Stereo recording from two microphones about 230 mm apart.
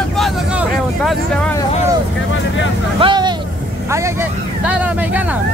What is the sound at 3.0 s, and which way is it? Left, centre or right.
Vehicle, centre.